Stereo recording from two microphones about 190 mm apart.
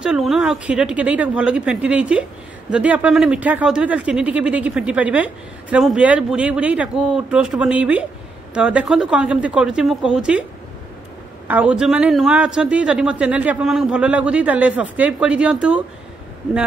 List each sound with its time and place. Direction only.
0.0 s a woman's voice: 5° right (ahead or behind)
11.4 s speech: 10° right (ahead or behind)